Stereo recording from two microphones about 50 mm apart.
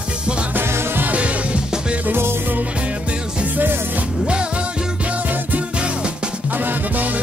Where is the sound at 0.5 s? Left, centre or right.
Right.